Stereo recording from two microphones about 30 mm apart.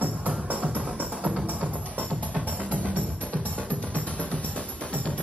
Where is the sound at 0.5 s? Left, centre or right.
Right.